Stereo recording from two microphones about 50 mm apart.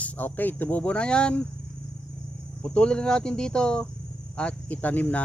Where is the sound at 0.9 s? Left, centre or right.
Left.